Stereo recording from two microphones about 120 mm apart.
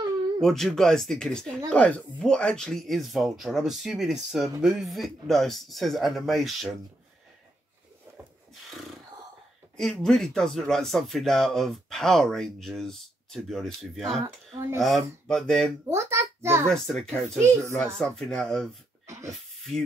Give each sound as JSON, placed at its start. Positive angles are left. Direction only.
{"t": 0.4, "sound": "speech", "side_deg": 5}
{"t": 8.6, "sound": "beatboxing", "side_deg": 0}
{"t": 9.8, "sound": "speech", "side_deg": 0}
{"t": 14.2, "sound": "speech", "side_deg": -25}
{"t": 14.8, "sound": "speech", "side_deg": 0}
{"t": 15.9, "sound": "a sound", "side_deg": -20}
{"t": 16.6, "sound": "speech", "side_deg": 5}
{"t": 17.4, "sound": "speech", "side_deg": -20}
{"t": 17.9, "sound": "speech", "side_deg": 5}